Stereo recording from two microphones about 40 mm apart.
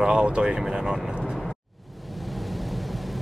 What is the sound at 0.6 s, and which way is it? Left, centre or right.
Speech, centre.